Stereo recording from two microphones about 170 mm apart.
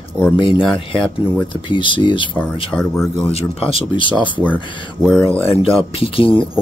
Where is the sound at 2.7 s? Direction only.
5° left (ahead or behind).